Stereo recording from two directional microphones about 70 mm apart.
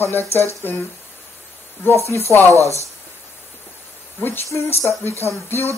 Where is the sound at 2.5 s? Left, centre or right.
Right.